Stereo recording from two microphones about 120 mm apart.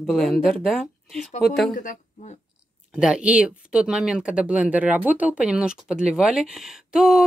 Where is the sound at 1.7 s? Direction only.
90° left.